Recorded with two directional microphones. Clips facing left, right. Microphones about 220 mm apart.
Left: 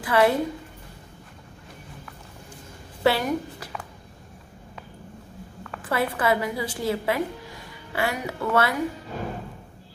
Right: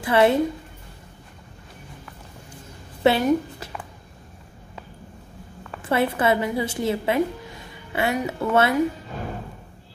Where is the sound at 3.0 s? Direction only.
20° right (ahead or behind).